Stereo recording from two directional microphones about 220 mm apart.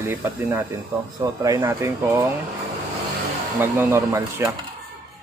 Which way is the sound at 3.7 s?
10° right (ahead or behind).